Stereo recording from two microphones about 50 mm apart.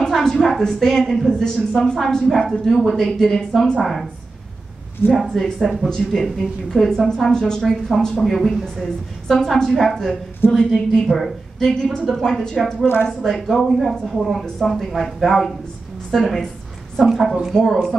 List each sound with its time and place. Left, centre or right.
0.4 s a woman's voice: centre
5.1 s speech: centre
5.9 s a woman's voice: centre
6.2 s a woman's voice: centre
8.2 s a woman's voice: centre
11.6 s a woman's voice: centre
12.8 s speech: left
13.2 s speech: centre